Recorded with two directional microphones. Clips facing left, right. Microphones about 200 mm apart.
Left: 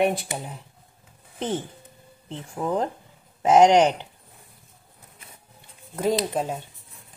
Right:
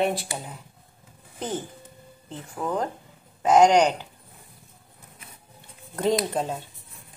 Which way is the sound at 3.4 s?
25° left (ahead or behind).